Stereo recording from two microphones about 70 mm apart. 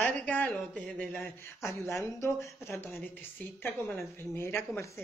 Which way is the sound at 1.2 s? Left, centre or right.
Left.